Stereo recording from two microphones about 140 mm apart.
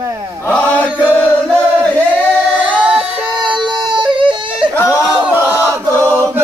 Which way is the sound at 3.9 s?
35° right (ahead or behind).